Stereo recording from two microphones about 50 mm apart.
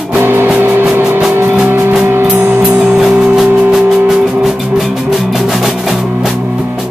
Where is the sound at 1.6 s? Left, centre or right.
Right.